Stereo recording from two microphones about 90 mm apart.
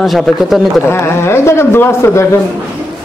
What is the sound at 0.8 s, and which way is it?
Speech, 25° left (ahead or behind).